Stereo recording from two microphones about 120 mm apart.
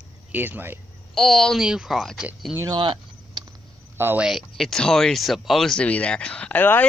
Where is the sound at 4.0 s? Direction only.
15° right (ahead or behind).